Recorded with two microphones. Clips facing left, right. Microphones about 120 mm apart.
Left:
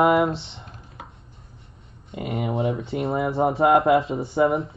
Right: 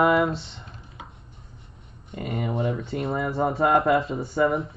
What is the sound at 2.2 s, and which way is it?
Speech, 5° left (ahead or behind).